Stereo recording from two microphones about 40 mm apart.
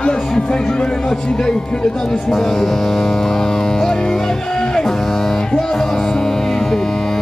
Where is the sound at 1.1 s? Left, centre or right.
Centre.